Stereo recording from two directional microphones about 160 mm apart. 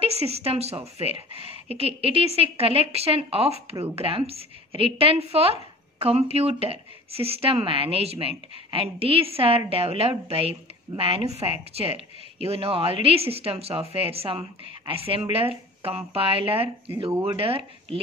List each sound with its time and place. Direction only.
0.0 s a woman's voice: 40° right (ahead or behind)